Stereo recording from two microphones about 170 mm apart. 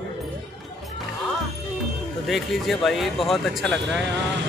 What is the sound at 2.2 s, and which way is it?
Speech, centre (ahead or behind).